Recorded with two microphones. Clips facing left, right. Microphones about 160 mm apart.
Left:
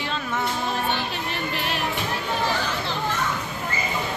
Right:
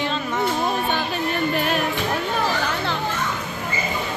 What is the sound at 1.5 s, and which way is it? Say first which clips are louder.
Music: right 6 dB; 45° right (ahead or behind).